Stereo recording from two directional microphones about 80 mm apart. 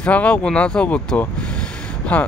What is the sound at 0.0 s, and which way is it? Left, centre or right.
Speech, centre.